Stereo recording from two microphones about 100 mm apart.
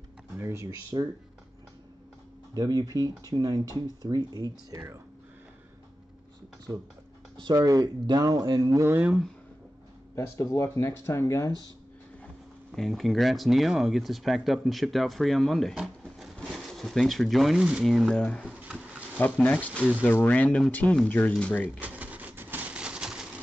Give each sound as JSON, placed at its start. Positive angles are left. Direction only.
{"t": 0.4, "sound": "speech", "side_deg": -30}
{"t": 2.5, "sound": "speech", "side_deg": -40}
{"t": 6.7, "sound": "speech", "side_deg": -35}
{"t": 8.8, "sound": "speech", "side_deg": -20}
{"t": 10.1, "sound": "speech", "side_deg": 30}
{"t": 12.7, "sound": "speech", "side_deg": 0}
{"t": 18.4, "sound": "a sound", "side_deg": -10}
{"t": 19.1, "sound": "speech", "side_deg": 15}
{"t": 21.7, "sound": "a sound", "side_deg": -15}